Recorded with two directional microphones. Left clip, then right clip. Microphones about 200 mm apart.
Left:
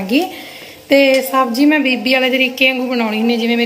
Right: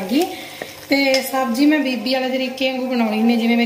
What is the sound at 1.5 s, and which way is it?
A woman's voice, 5° left (ahead or behind).